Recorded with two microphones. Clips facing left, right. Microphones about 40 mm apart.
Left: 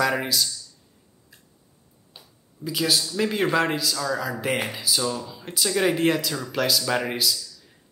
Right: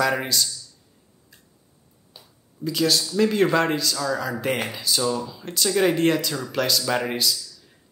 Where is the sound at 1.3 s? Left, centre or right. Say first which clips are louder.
Even; centre.